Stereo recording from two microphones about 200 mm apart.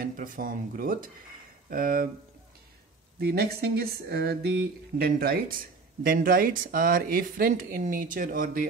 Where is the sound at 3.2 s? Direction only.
50° right (ahead or behind).